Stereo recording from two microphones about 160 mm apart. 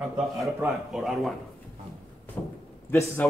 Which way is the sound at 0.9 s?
Centre (ahead or behind).